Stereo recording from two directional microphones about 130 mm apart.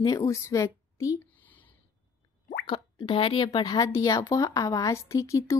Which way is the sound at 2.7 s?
40° left (ahead or behind).